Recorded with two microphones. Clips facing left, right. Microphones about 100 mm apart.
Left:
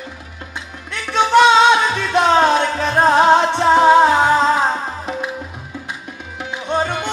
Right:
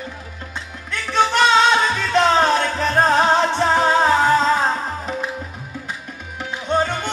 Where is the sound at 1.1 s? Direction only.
15° left (ahead or behind).